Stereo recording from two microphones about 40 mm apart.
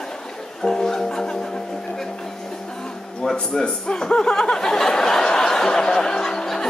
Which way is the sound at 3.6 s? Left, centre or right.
Left.